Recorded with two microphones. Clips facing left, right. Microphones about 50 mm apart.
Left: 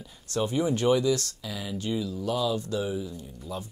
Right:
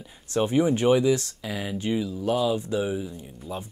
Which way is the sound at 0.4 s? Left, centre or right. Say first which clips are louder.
Right 4 dB; right.